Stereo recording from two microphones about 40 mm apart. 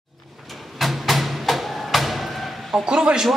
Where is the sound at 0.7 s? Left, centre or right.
Centre.